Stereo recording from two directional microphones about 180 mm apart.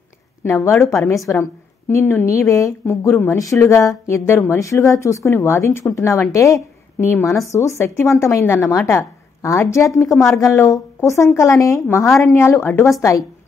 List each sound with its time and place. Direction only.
0.4 s a woman's voice: 15° left (ahead or behind)